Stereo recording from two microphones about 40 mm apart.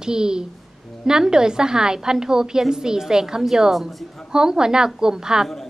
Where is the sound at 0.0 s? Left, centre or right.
Centre.